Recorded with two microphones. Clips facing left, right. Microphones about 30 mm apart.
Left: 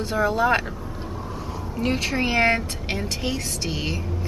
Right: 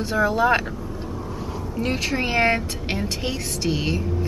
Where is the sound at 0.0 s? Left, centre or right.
Centre.